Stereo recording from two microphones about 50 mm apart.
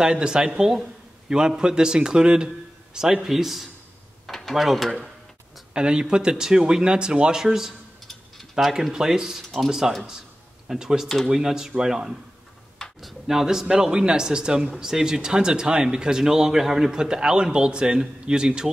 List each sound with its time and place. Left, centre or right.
0.0 s speech: centre
5.7 s speech: centre
8.1 s tick-tock: centre
8.9 s speech: centre